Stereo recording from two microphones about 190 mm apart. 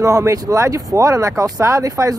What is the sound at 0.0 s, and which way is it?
Speech, 15° right (ahead or behind).